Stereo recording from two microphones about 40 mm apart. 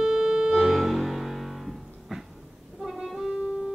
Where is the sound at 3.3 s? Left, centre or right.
Right.